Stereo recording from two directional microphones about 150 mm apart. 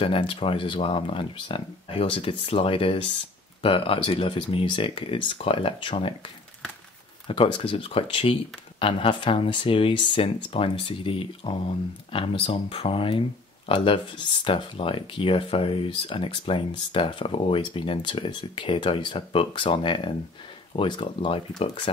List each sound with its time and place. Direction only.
0.0 s speech: 35° left (ahead or behind)
7.2 s speech: 35° left (ahead or behind)